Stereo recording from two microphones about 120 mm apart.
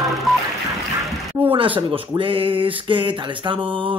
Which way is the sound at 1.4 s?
45° right (ahead or behind).